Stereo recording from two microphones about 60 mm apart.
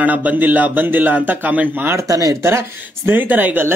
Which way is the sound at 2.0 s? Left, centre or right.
Right.